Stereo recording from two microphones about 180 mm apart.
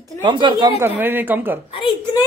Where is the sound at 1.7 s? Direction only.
30° left (ahead or behind).